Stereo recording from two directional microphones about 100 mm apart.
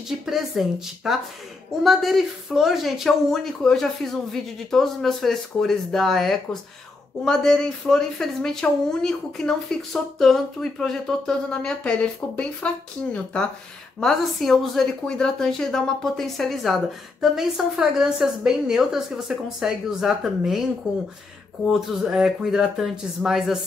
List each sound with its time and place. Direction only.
0.2 s a woman's voice: centre (ahead or behind)